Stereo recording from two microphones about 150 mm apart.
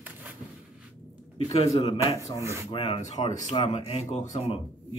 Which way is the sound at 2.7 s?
40° left (ahead or behind).